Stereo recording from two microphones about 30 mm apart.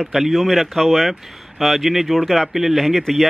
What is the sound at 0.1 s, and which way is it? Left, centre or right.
Speech, centre.